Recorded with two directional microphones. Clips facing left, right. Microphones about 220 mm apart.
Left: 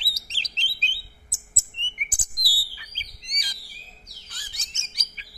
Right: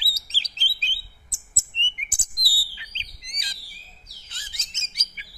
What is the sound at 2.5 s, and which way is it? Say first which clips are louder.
Bird: right 2 dB; 25° right (ahead or behind).